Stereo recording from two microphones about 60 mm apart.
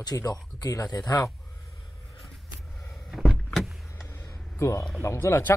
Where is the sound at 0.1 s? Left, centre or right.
Left.